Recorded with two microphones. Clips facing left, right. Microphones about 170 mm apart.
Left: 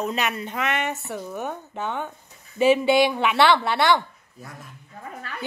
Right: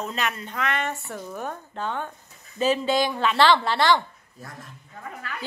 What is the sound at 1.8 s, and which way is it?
Speech, 15° left (ahead or behind).